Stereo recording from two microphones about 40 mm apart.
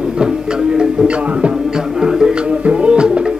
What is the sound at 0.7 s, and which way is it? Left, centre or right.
Speech, right.